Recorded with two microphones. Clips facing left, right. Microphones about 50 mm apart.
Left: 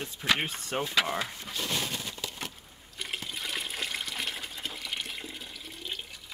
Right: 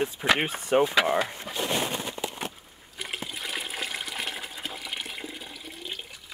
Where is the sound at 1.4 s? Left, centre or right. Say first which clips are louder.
Right 5 dB; right.